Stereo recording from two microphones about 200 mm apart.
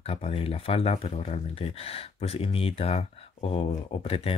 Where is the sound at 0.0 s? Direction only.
30° left (ahead or behind).